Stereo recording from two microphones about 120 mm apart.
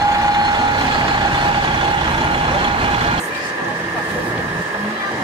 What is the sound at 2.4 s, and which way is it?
Vehicle, 45° right (ahead or behind).